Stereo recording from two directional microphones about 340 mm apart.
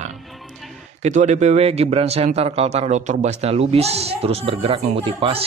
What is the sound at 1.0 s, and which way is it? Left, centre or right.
Speech, right.